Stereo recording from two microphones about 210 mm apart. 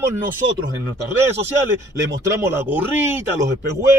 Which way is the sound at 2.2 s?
10° right (ahead or behind).